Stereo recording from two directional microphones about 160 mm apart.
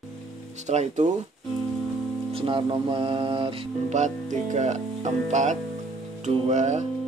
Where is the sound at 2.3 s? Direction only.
35° right (ahead or behind).